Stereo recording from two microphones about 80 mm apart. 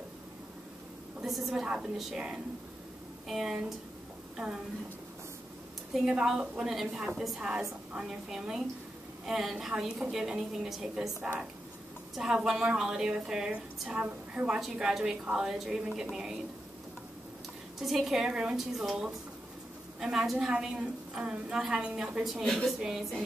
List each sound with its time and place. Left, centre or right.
1.2 s a woman's voice: centre
6.0 s a woman's voice: centre
12.2 s a woman's voice: centre
17.7 s a woman's voice: centre
22.3 s a woman's voice: centre
22.7 s a woman's voice: centre